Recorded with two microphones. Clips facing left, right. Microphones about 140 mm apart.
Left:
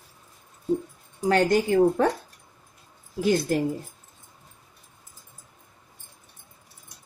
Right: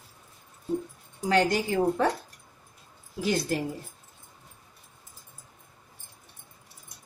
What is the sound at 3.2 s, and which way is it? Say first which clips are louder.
Speech: left 5 dB; 50° left (ahead or behind).